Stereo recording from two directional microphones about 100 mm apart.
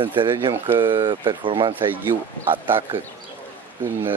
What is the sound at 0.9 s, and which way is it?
Speech, 55° right (ahead or behind).